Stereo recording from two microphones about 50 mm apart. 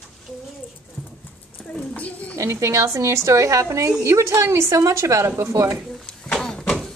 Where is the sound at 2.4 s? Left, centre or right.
Right.